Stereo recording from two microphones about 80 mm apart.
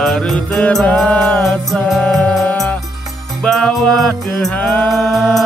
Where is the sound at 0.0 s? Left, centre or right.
Centre.